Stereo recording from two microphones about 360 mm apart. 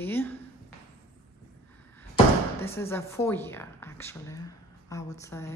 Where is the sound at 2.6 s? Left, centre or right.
Centre.